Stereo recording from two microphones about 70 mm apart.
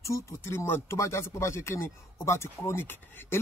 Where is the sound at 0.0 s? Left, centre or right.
Left.